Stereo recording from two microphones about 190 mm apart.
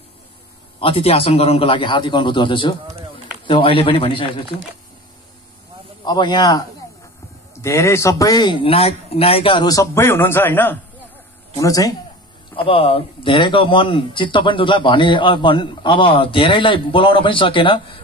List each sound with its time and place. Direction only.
0.7 s speech: 30° left (ahead or behind)
6.0 s speech: 25° left (ahead or behind)
7.6 s speech: 15° left (ahead or behind)
12.5 s speech: 30° left (ahead or behind)